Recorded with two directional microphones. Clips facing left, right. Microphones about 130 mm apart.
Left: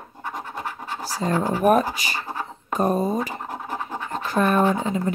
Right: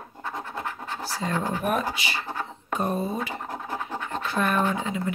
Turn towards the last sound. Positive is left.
turn(degrees=40)  # may be behind; listen again after turning